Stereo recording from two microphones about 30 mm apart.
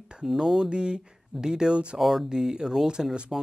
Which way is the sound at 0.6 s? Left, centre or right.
Right.